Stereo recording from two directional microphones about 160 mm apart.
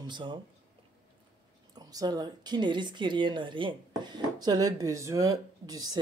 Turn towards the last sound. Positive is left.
turn(degrees=-25)  # may be behind; listen again after turning